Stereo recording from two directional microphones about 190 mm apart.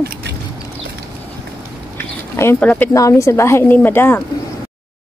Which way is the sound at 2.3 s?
10° left (ahead or behind).